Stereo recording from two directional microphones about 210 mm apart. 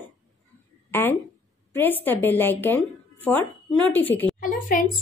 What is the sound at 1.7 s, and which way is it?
A woman's voice, 10° left (ahead or behind).